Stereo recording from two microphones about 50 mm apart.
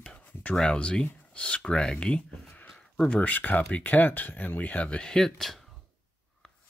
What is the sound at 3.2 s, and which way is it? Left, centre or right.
Speech, left.